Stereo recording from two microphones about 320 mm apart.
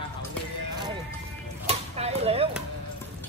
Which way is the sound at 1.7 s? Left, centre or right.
Centre.